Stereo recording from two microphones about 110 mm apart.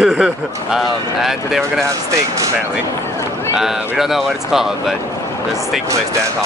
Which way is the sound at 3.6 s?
5° right (ahead or behind).